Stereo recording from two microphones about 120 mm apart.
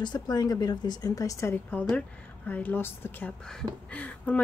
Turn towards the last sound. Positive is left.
turn(degrees=10)  # may be behind; listen again after turning